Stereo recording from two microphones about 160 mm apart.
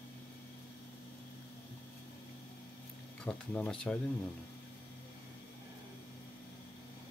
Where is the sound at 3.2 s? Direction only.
5° left (ahead or behind).